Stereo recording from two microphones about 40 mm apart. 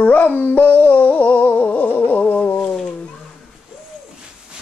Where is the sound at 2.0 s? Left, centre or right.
Left.